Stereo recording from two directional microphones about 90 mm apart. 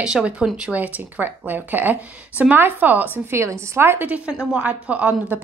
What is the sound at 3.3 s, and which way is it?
A woman's voice, 30° right (ahead or behind).